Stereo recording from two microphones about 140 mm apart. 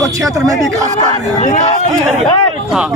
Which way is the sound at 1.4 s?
60° left (ahead or behind).